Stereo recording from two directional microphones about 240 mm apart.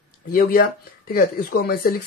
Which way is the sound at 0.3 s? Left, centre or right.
Left.